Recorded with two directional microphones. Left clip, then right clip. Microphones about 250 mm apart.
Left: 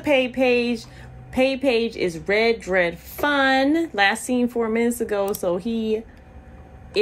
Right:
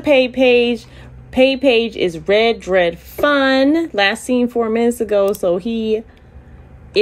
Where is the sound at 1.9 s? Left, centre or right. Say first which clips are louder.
Right 7 dB; centre.